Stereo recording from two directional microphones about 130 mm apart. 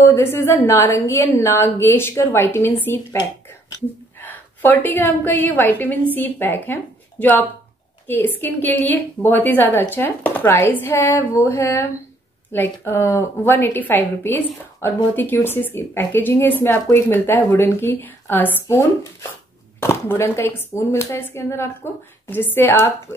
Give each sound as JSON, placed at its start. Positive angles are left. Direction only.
{"t": 0.0, "sound": "a woman's voice", "side_deg": 20}
{"t": 4.2, "sound": "a woman's voice", "side_deg": 15}